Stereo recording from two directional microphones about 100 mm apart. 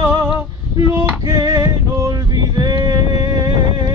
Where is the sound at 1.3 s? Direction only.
40° right (ahead or behind).